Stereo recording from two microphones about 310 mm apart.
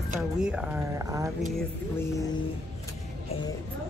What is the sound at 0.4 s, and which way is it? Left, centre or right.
Speech, centre.